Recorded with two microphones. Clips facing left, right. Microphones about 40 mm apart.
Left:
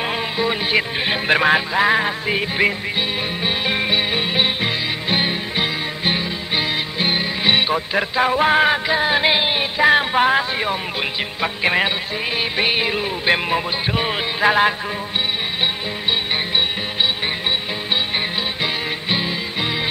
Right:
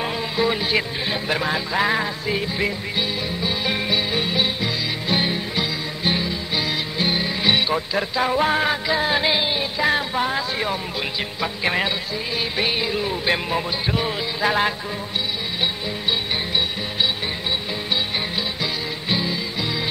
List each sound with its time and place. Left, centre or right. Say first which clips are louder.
1.0 s speech: left 6 dB; left
1.7 s music: left 4 dB; centre
2.0 s music: left 3 dB; left
9.3 s music: left 3 dB; left
9.9 s speech: left 6 dB; left
11.4 s music: left 4 dB; left
16.5 s music: left 2 dB; left
18.6 s music: left 4 dB; left